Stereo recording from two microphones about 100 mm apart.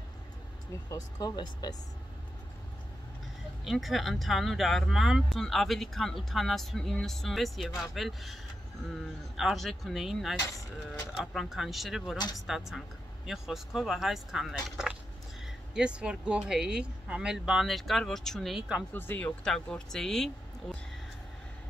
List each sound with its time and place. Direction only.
0.8 s speech: 40° left (ahead or behind)
3.6 s speech: centre (ahead or behind)
9.4 s speech: centre (ahead or behind)
11.3 s speech: 5° right (ahead or behind)
18.9 s speech: 15° left (ahead or behind)
19.5 s speech: 5° left (ahead or behind)